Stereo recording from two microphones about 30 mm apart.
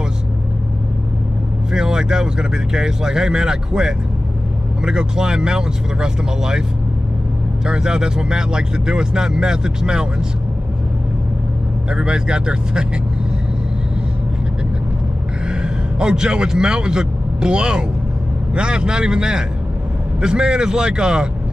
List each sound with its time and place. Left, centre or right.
1.7 s speech: right
7.6 s speech: right
11.9 s speech: right
15.6 s a man's voice: right